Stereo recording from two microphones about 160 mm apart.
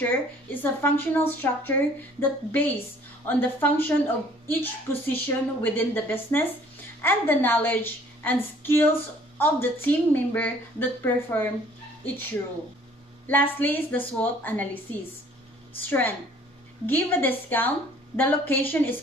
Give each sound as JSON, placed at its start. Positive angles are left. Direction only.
{"t": 0.0, "sound": "a woman's voice", "side_deg": 10}
{"t": 13.3, "sound": "a woman's voice", "side_deg": 10}